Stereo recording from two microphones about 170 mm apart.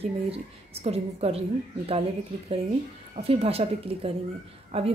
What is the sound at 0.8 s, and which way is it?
Speech, 35° right (ahead or behind).